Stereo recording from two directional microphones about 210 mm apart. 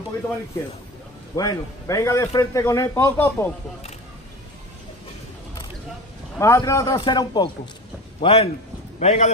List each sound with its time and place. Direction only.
1.3 s a man's voice: 15° left (ahead or behind)
6.3 s a man's voice: 15° left (ahead or behind); by 9.3 s 30° left (ahead or behind)